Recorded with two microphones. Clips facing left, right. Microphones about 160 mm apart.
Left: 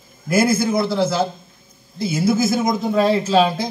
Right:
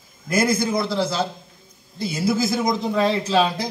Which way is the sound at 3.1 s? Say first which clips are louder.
Left 5 dB; 25° left (ahead or behind).